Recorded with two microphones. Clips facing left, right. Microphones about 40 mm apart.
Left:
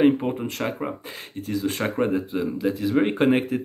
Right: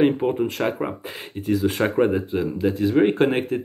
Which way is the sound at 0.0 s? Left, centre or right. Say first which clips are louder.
Right 1 dB; centre.